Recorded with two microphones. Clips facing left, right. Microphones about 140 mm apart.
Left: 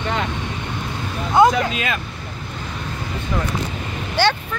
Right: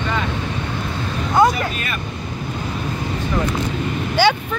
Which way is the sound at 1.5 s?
90° left.